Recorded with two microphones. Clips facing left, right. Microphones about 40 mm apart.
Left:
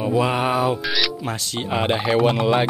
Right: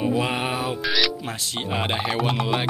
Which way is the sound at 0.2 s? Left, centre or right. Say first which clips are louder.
Left 5 dB; centre.